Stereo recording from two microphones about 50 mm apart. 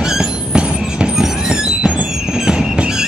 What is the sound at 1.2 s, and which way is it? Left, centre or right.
Train, centre.